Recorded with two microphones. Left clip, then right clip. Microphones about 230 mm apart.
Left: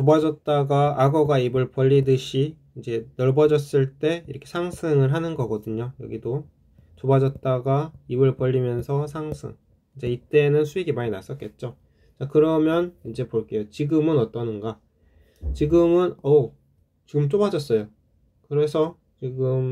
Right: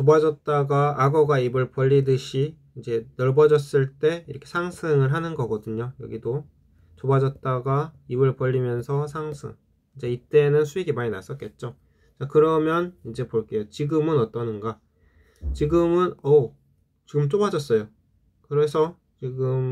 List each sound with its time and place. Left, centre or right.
0.0 s speech: centre